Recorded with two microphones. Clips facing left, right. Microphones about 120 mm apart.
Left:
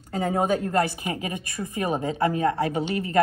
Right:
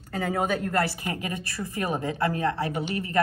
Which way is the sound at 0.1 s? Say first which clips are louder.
Left 3 dB; 25° left (ahead or behind).